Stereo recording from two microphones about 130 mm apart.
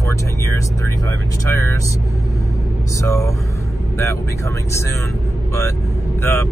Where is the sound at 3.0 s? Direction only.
25° left (ahead or behind).